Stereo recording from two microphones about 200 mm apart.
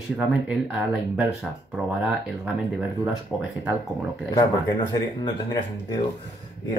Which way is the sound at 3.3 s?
Centre (ahead or behind).